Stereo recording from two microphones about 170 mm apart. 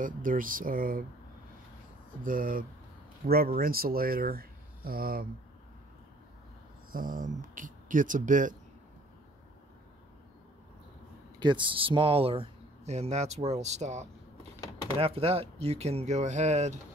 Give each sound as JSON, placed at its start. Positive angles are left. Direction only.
{"t": 0.0, "sound": "speech", "side_deg": -50}
{"t": 2.2, "sound": "speech", "side_deg": -55}
{"t": 6.9, "sound": "speech", "side_deg": -55}
{"t": 11.3, "sound": "speech", "side_deg": -25}